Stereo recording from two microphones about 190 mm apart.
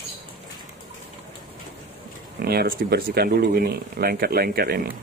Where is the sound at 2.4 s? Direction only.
55° right (ahead or behind).